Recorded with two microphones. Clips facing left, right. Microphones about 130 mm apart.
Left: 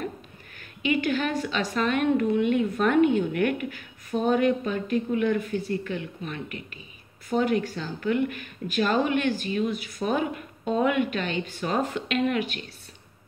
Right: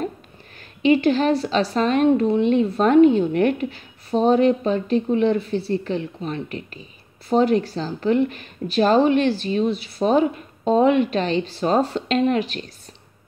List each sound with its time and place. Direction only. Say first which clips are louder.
0.8 s speech: right 8 dB; 35° right (ahead or behind)